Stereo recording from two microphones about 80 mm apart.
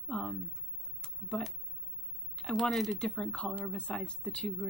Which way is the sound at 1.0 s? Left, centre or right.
Centre.